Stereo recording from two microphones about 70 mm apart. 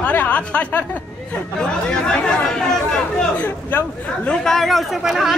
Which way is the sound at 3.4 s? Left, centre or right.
Left.